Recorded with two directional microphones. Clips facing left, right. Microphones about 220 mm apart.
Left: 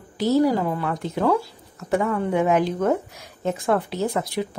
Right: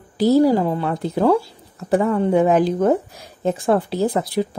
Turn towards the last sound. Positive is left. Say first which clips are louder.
# right 5 dB
turn(degrees=-35)  # may be behind; listen again after turning